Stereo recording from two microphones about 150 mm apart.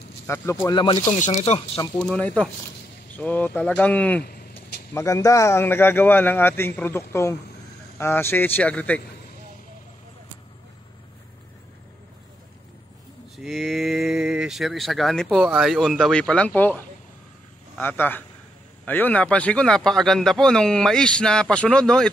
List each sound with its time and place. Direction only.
0.3 s speech: 15° left (ahead or behind)
0.9 s speech: 50° left (ahead or behind)
2.0 s speech: 5° left (ahead or behind)
4.9 s speech: 20° left (ahead or behind)
13.4 s speech: centre (ahead or behind)